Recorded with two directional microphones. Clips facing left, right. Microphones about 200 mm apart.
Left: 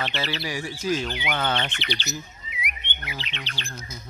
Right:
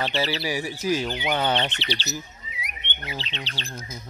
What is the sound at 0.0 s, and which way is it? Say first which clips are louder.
Bird: right 4 dB; 35° right (ahead or behind).